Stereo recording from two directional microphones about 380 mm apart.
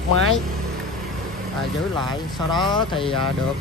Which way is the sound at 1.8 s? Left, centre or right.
Centre.